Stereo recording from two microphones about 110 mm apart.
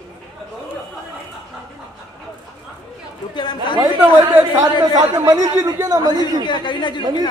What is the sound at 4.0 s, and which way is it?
Speech, 15° right (ahead or behind).